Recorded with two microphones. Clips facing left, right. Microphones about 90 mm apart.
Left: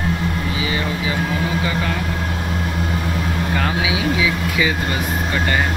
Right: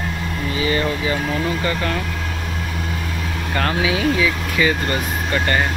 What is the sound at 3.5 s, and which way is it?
Speech, 10° left (ahead or behind).